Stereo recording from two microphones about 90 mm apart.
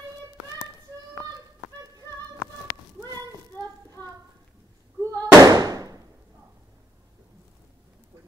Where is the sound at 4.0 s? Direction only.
15° left (ahead or behind).